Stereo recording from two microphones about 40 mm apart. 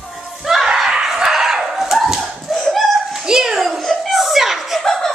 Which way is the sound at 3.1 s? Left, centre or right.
Centre.